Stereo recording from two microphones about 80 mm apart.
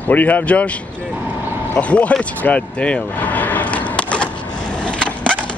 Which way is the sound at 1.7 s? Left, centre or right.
Centre.